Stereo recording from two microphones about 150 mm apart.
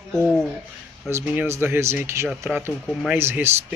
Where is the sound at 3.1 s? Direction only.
15° right (ahead or behind).